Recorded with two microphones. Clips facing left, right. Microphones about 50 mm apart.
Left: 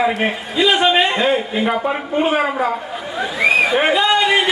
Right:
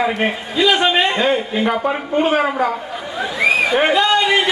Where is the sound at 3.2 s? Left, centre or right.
Centre.